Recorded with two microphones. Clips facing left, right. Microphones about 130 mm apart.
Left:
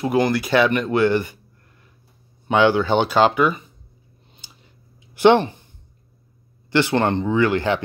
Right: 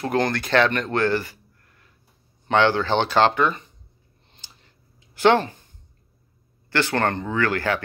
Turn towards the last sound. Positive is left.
turn(degrees=20)  # may be behind; listen again after turning